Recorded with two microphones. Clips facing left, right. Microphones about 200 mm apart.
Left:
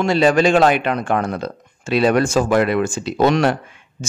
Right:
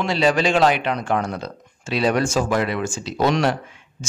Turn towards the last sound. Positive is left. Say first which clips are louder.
# left 4 dB
turn(degrees=55)  # may be behind; listen again after turning